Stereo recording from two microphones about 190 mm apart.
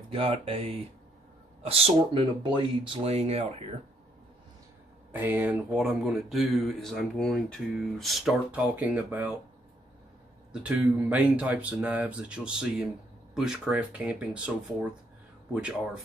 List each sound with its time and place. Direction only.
0.1 s speech: 30° right (ahead or behind)
5.1 s speech: 10° right (ahead or behind)
10.5 s speech: 5° right (ahead or behind)